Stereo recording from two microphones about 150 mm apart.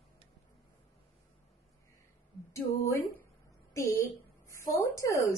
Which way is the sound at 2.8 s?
20° left (ahead or behind).